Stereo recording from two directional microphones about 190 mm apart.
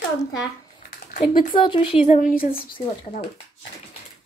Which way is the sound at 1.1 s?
45° left (ahead or behind).